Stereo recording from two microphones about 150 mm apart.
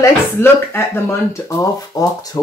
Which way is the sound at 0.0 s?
15° left (ahead or behind).